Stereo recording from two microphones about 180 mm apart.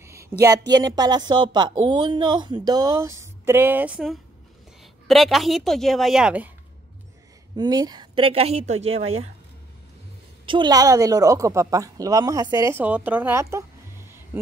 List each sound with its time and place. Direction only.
0.0 s a woman's voice: 15° right (ahead or behind)
7.5 s a woman's voice: 25° right (ahead or behind)
10.4 s a woman's voice: 25° right (ahead or behind)
14.3 s a sound: 15° right (ahead or behind)